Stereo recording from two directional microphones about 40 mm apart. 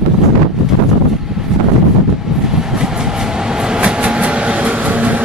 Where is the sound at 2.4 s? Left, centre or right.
Centre.